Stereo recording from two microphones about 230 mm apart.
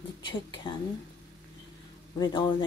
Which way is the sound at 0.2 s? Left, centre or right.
Centre.